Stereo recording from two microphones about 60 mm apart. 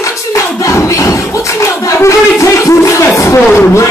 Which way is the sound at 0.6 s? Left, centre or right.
Left.